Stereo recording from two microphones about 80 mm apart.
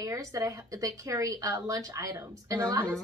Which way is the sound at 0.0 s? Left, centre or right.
Right.